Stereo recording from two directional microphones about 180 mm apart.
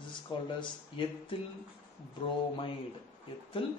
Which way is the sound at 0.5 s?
30° left (ahead or behind).